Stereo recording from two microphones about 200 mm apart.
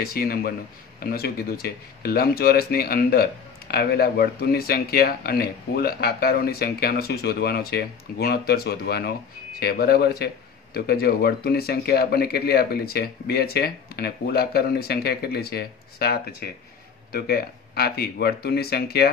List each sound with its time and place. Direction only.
0.0 s speech: 50° left (ahead or behind)